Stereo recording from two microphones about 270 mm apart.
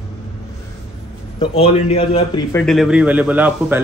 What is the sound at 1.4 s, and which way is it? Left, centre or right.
A man's voice, left.